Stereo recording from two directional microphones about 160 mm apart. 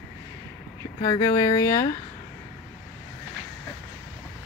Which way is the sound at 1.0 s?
25° left (ahead or behind).